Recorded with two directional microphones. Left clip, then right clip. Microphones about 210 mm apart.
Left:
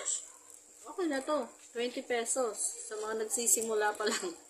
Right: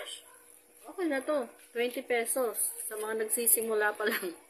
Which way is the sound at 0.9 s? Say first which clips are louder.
Right 2 dB; 15° right (ahead or behind).